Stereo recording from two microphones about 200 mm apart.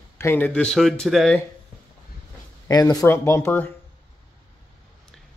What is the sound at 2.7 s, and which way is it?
Speech, 20° left (ahead or behind).